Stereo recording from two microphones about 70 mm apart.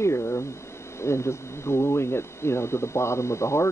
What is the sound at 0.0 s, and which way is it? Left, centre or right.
Speech, left.